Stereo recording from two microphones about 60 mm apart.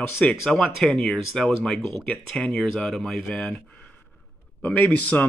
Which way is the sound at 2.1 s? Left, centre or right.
Left.